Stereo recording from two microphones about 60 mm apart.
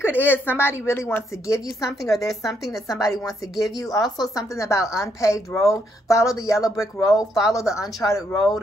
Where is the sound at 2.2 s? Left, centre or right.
Centre.